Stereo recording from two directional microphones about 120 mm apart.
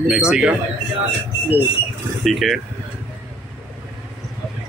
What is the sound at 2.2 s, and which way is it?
Speech, centre (ahead or behind).